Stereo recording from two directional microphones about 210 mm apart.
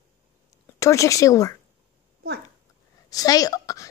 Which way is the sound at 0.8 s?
15° left (ahead or behind).